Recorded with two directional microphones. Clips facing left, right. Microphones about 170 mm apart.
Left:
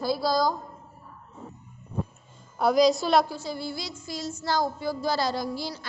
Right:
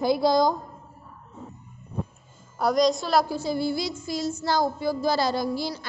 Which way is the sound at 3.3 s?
10° right (ahead or behind).